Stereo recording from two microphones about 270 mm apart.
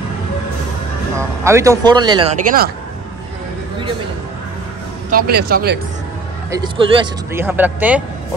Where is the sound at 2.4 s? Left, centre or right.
Right.